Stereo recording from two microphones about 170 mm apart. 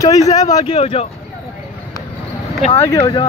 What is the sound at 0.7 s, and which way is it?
Speech, 35° left (ahead or behind).